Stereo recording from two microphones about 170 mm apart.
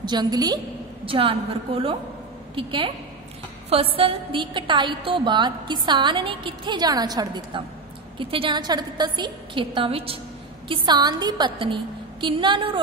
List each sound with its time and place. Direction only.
0.0 s a woman's voice: 25° right (ahead or behind)